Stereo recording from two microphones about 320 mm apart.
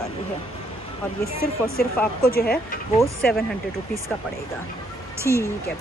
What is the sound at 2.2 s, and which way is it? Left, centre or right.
Speech, left.